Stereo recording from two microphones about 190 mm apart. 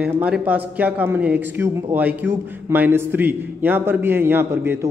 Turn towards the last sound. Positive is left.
turn(degrees=-15)  # may be behind; listen again after turning